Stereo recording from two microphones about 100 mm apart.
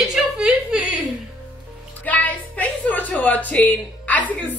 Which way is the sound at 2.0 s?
15° left (ahead or behind).